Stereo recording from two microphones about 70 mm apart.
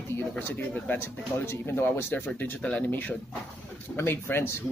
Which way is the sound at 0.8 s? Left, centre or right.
Left.